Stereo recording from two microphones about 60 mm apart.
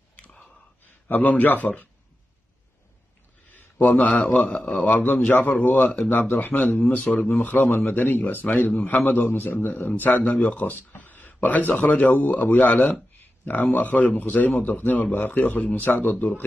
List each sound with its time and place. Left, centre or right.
1.0 s speech: left
3.4 s a sound: left
4.3 s speech: left
7.3 s a man's voice: left